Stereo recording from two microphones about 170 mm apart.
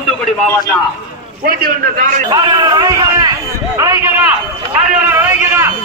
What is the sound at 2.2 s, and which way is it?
A man's voice, 25° right (ahead or behind).